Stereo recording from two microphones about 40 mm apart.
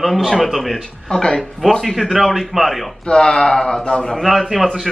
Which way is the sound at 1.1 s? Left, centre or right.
Centre.